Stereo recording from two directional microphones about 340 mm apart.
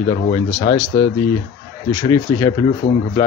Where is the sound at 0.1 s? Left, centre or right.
Centre.